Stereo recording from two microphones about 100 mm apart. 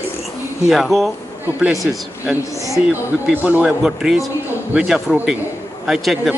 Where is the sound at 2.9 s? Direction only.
15° right (ahead or behind).